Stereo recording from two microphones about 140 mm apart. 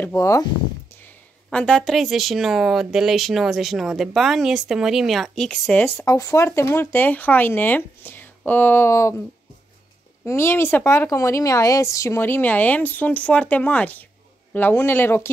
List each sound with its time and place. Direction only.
0.0 s speech: 20° left (ahead or behind)
0.9 s a woman's voice: 10° left (ahead or behind)
6.0 s speech: 20° left (ahead or behind)
10.2 s speech: 20° left (ahead or behind)